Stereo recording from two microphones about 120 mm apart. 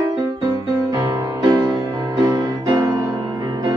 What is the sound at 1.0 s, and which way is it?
Music, 35° right (ahead or behind).